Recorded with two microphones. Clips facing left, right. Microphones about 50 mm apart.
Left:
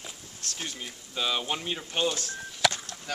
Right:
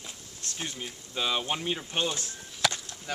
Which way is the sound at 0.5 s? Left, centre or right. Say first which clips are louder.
Right 1 dB; centre.